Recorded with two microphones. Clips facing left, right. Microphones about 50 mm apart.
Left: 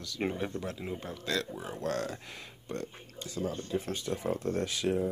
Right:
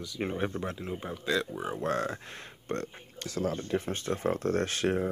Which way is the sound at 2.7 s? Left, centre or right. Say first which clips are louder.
Right 4 dB; right.